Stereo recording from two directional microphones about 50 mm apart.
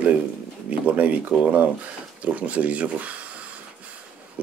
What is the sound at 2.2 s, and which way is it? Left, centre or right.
Speech, right.